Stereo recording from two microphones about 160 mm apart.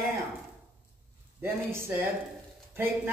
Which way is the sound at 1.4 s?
15° right (ahead or behind).